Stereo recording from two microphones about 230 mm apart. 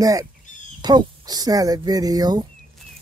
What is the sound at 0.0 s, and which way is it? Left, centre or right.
Speech, centre.